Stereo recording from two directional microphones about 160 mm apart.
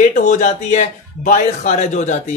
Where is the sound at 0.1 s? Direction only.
50° left (ahead or behind).